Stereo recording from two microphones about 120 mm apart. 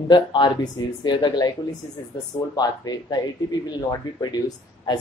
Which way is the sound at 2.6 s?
35° left (ahead or behind).